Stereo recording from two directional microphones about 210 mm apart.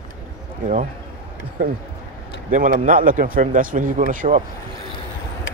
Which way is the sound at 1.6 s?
40° right (ahead or behind).